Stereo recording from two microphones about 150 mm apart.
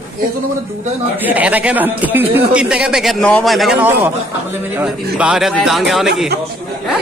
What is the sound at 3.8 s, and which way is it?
Speech, 15° right (ahead or behind).